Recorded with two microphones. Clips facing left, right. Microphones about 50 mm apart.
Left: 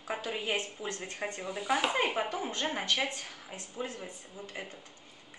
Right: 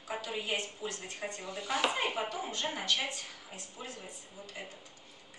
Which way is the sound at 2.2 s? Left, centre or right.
Left.